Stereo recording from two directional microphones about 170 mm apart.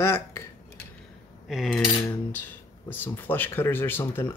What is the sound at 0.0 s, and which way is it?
Speech, 15° left (ahead or behind).